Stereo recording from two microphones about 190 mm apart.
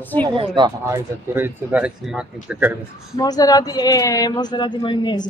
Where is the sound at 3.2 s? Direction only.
20° left (ahead or behind).